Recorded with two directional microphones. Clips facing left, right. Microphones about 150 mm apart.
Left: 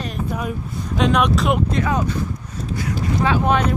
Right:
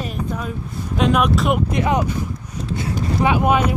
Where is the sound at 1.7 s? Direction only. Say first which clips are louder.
Right 1 dB; 20° right (ahead or behind).